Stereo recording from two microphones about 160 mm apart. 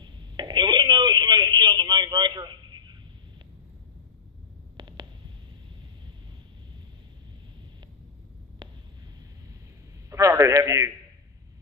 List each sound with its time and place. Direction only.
0.0 s telephone: 25° right (ahead or behind)
4.7 s a sound: 30° right (ahead or behind)
10.0 s a man's voice: 20° right (ahead or behind)